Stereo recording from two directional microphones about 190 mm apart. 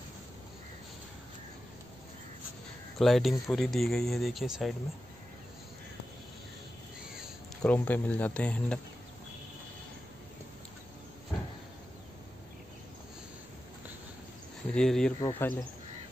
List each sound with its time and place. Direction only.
3.0 s speech: centre (ahead or behind)
7.2 s speech: 5° left (ahead or behind)
14.7 s speech: 5° left (ahead or behind)
15.1 s speech: 20° left (ahead or behind)